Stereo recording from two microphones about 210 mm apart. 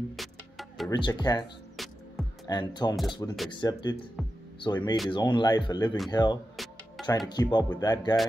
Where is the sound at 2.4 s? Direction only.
20° left (ahead or behind).